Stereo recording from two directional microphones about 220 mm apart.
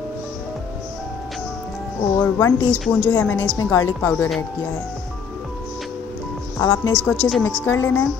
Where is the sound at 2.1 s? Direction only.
15° left (ahead or behind).